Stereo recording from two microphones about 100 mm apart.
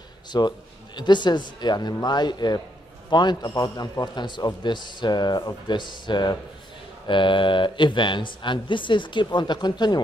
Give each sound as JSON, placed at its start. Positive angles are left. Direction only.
{"t": 0.3, "sound": "a man's voice", "side_deg": 45}